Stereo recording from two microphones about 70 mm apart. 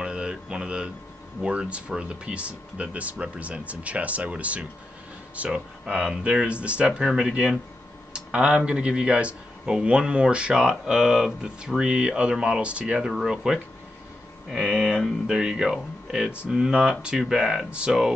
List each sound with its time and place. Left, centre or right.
0.0 s a sound: centre
1.4 s speech: centre
7.0 s speech: centre